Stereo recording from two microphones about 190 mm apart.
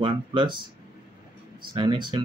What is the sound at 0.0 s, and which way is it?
Speech, 25° right (ahead or behind).